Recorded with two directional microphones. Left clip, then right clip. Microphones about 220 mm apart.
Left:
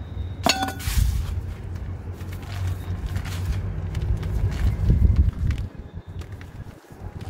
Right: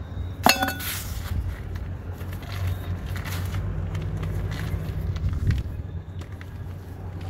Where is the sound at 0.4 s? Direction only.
20° right (ahead or behind).